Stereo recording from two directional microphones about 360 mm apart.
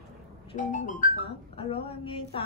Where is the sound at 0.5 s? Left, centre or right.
Left.